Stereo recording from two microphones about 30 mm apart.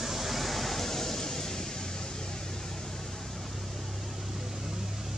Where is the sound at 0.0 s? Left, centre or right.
Centre.